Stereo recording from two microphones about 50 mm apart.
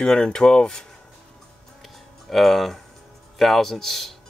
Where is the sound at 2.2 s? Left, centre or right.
Centre.